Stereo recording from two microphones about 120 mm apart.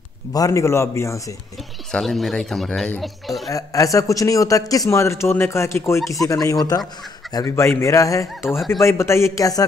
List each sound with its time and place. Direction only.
0.3 s a man's voice: 30° left (ahead or behind)
1.9 s speech: 5° left (ahead or behind)
3.4 s a man's voice: 30° left (ahead or behind)